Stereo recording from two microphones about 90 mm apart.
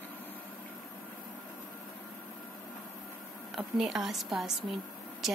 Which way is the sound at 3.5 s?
5° right (ahead or behind).